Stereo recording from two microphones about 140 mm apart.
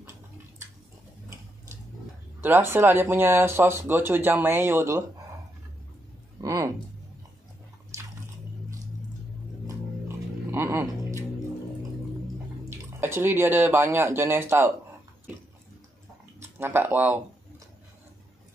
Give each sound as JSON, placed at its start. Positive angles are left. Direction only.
{"t": 2.4, "sound": "speech", "side_deg": -15}
{"t": 6.4, "sound": "a sound", "side_deg": -25}
{"t": 9.7, "sound": "music", "side_deg": -15}
{"t": 12.6, "sound": "speech", "side_deg": -15}
{"t": 16.3, "sound": "speech", "side_deg": -15}